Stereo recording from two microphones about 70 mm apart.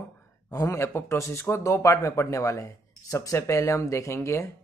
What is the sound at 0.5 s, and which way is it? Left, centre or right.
Speech, left.